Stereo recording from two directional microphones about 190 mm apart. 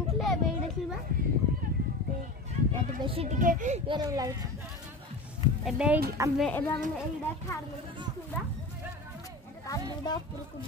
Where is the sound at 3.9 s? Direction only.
20° right (ahead or behind).